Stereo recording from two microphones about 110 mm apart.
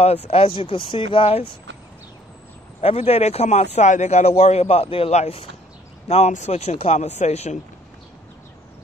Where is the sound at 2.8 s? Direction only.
70° left (ahead or behind).